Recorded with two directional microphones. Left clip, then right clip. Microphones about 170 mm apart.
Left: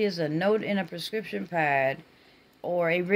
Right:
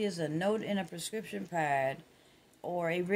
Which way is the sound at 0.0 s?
20° left (ahead or behind).